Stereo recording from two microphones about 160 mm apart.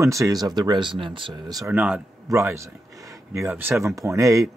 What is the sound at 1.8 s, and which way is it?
Speech, 5° right (ahead or behind).